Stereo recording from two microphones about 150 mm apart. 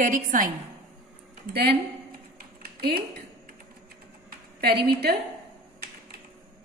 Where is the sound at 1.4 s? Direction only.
90° right.